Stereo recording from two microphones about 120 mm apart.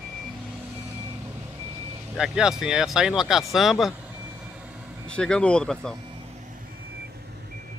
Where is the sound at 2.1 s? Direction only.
5° right (ahead or behind).